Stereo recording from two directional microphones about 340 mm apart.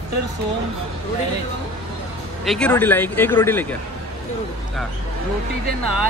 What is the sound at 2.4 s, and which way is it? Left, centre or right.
A man's voice, centre.